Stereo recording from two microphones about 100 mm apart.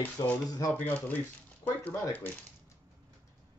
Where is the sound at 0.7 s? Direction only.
20° left (ahead or behind).